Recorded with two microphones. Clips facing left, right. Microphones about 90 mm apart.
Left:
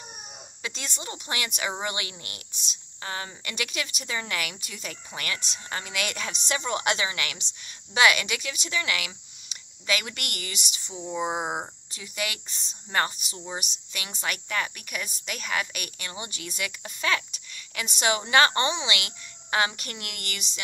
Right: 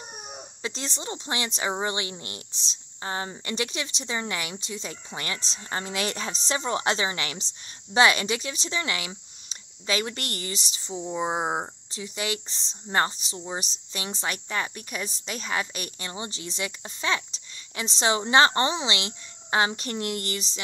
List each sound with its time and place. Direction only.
0.6 s speech: 30° right (ahead or behind)
11.0 s speech: 10° right (ahead or behind)
11.2 s speech: 25° right (ahead or behind)